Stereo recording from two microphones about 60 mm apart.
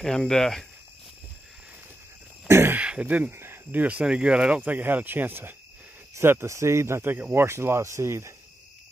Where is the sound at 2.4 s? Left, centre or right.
Right.